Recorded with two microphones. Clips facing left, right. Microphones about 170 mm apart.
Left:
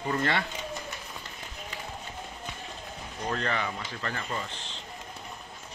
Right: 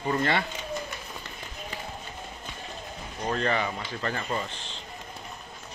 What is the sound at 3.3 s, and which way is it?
Speech, 25° right (ahead or behind).